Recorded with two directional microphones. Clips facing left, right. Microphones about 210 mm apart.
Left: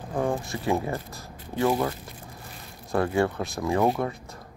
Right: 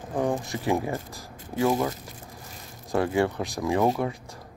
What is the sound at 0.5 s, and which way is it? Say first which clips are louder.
Speech: even; 15° right (ahead or behind).